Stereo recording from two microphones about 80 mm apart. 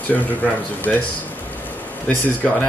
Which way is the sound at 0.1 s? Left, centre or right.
Left.